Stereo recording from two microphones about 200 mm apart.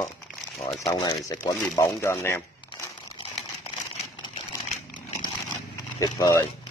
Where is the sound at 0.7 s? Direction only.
20° left (ahead or behind).